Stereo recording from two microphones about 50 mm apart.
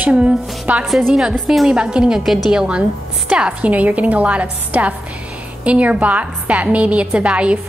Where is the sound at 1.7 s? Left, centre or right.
Centre.